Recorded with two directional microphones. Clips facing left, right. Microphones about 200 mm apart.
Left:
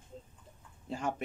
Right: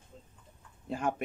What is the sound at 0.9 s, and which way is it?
Speech, 55° right (ahead or behind).